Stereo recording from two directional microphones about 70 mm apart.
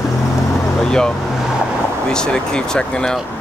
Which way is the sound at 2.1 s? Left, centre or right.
Centre.